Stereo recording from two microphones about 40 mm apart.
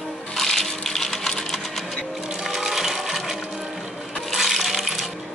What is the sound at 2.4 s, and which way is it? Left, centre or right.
Water, centre.